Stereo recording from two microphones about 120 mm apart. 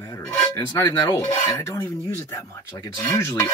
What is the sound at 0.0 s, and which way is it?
Music, 20° left (ahead or behind).